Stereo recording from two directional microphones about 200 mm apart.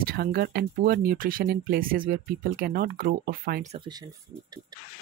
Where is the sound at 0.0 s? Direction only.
50° right (ahead or behind).